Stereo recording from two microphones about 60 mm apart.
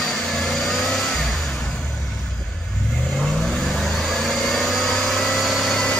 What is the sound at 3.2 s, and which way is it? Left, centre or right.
Vehicle, centre.